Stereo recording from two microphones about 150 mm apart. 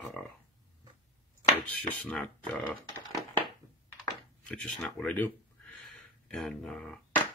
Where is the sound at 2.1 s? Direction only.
5° left (ahead or behind).